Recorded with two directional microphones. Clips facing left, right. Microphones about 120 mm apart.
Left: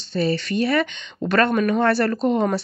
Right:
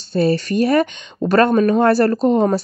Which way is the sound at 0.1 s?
40° right (ahead or behind).